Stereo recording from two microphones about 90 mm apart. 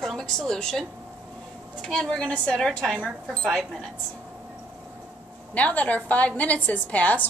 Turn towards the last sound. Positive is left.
turn(degrees=15)  # may be behind; listen again after turning